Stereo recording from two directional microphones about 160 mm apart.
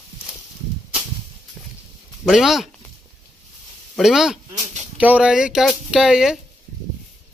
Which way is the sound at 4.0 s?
Centre (ahead or behind).